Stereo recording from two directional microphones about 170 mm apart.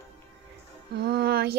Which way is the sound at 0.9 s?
70° right (ahead or behind).